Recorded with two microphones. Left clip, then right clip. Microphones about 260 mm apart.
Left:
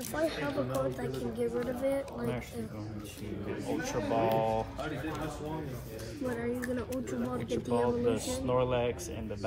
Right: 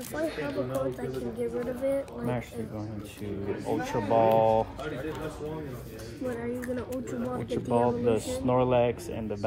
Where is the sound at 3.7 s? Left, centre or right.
Right.